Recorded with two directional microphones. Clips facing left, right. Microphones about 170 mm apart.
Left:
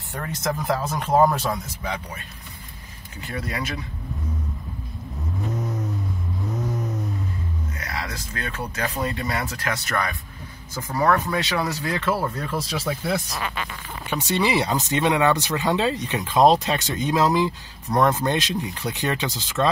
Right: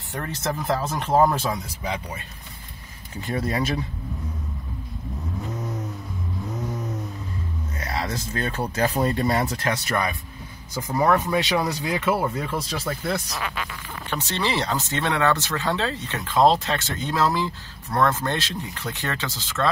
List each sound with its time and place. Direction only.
0.1 s speech: 5° left (ahead or behind)
3.3 s speech: 30° right (ahead or behind)
5.4 s vehicle: centre (ahead or behind)
7.8 s speech: 30° right (ahead or behind)
12.1 s speech: 5° right (ahead or behind)
12.5 s speech: 5° left (ahead or behind)